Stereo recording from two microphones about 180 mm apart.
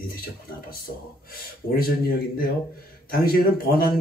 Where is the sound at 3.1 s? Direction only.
55° left (ahead or behind).